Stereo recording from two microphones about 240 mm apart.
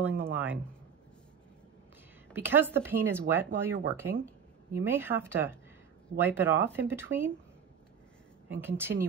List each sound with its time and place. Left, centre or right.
0.2 s a sound: centre
2.3 s speech: centre
8.5 s speech: centre